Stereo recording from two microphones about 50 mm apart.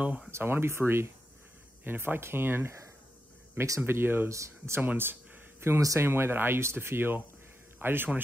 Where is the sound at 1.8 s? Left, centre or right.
Right.